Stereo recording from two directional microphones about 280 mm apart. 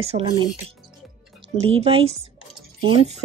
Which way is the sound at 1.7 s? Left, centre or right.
Right.